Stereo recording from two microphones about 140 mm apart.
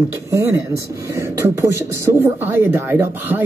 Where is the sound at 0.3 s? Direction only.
20° right (ahead or behind).